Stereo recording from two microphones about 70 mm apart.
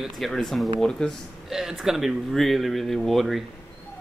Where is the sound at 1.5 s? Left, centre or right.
Centre.